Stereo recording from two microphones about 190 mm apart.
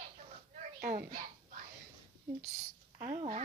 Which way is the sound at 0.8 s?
50° right (ahead or behind).